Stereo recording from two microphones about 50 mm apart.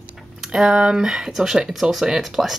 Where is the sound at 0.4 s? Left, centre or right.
Centre.